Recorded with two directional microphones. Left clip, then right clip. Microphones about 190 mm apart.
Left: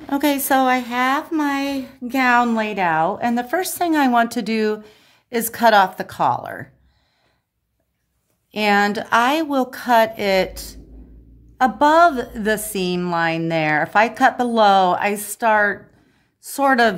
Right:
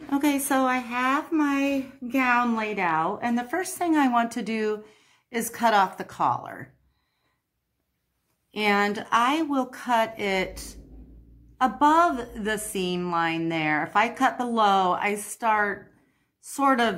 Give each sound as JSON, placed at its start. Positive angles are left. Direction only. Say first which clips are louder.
{"t": 0.1, "sound": "speech", "louder": "left 6 dB", "side_deg": 50}
{"t": 8.5, "sound": "speech", "louder": "left 6 dB", "side_deg": 50}